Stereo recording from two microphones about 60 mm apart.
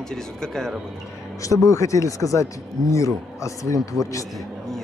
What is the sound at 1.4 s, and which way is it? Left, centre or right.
Speech, left.